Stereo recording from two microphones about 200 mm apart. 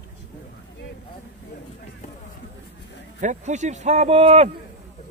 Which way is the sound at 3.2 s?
40° right (ahead or behind).